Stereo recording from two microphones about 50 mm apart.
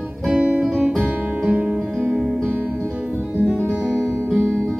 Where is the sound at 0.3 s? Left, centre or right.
Centre.